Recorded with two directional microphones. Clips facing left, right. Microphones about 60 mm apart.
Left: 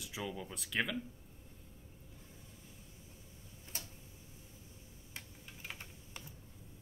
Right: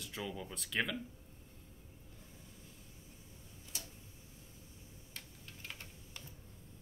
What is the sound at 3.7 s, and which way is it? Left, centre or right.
Tick-tock, left.